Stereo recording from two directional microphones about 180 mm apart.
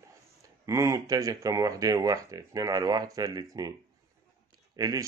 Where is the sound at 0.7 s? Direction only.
15° right (ahead or behind).